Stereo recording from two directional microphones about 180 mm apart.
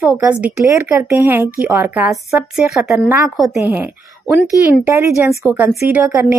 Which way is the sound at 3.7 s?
10° right (ahead or behind).